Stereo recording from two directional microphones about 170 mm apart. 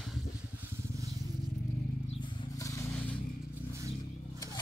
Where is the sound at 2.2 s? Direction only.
25° left (ahead or behind).